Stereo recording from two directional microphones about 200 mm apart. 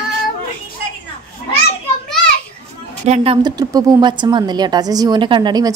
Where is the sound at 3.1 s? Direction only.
25° right (ahead or behind).